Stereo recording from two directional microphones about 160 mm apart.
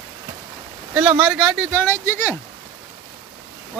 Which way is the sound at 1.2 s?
Centre (ahead or behind).